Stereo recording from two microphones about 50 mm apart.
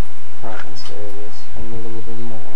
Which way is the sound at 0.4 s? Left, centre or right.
Right.